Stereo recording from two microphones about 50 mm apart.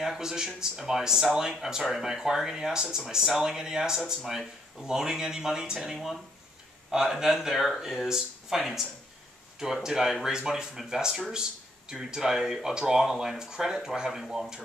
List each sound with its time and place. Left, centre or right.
0.0 s speech: centre
9.8 s speech: centre